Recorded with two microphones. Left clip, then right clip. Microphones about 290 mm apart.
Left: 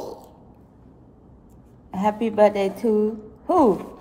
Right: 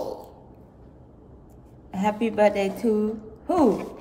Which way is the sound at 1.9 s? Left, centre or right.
Centre.